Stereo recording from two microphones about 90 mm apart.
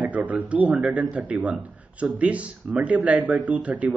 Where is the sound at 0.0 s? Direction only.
15° right (ahead or behind).